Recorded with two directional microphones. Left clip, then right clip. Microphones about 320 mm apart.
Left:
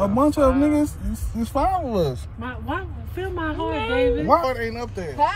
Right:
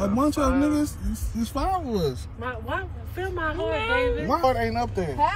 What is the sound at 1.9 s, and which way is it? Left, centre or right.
Speech, centre.